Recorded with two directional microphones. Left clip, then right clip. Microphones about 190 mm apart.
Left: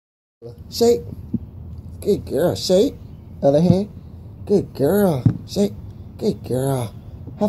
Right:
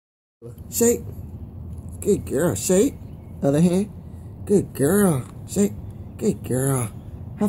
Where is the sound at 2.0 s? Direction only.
45° right (ahead or behind).